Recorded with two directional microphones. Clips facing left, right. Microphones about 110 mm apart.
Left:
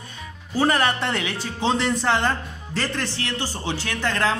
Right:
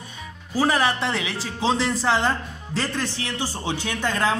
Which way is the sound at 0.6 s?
5° right (ahead or behind).